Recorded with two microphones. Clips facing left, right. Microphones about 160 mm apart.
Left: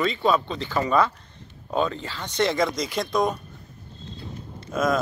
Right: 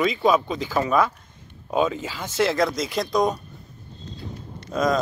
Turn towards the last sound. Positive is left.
turn(degrees=5)  # may be behind; listen again after turning